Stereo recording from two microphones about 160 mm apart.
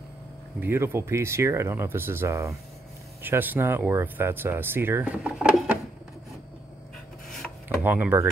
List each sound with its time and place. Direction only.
0.6 s speech: 15° right (ahead or behind)
5.1 s speech: 5° right (ahead or behind)
7.8 s speech: 10° right (ahead or behind)